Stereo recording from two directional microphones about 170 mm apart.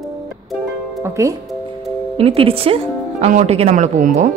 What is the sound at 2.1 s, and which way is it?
Speech, 35° right (ahead or behind).